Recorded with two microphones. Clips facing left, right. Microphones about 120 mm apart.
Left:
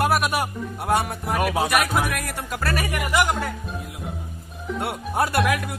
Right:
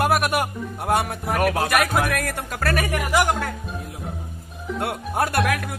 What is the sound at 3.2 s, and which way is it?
Speech, centre (ahead or behind).